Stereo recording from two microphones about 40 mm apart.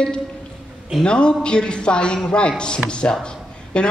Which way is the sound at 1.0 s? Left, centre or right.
Left.